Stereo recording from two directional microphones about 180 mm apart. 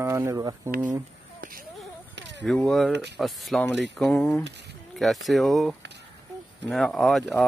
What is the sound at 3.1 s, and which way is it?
Speech, centre (ahead or behind).